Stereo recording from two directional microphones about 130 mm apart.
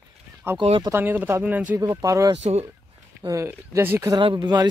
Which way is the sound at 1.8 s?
25° right (ahead or behind).